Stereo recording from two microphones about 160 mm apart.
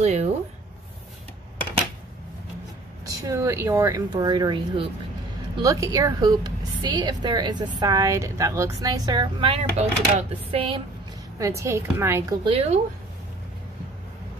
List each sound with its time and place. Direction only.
0.0 s a sound: 45° right (ahead or behind)
3.1 s a woman's voice: 20° right (ahead or behind); by 10.8 s 35° right (ahead or behind)
11.3 s a woman's voice: 20° right (ahead or behind)